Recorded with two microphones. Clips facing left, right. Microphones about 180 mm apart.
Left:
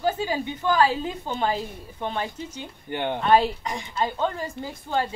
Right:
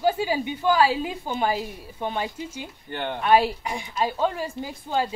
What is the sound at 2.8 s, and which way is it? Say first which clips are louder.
Speech: left 3 dB; 15° left (ahead or behind).